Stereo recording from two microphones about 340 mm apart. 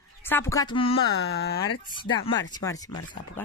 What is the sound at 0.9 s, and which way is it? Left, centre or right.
Speech, left.